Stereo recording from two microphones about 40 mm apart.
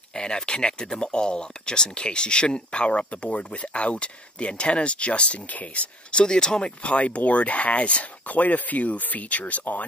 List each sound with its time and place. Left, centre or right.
0.1 s speech: centre; by 5.9 s left
6.1 s speech: centre
6.8 s speech: left